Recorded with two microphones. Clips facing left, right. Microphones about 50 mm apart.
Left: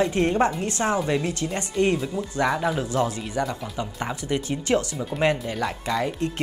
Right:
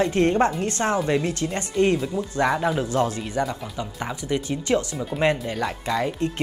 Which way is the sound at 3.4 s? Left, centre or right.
Right.